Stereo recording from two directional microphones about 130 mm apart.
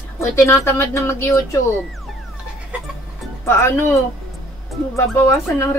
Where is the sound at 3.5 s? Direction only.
20° left (ahead or behind).